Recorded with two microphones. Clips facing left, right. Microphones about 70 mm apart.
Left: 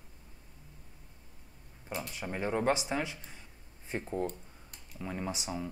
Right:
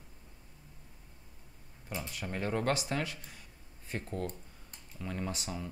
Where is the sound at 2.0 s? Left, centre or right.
Centre.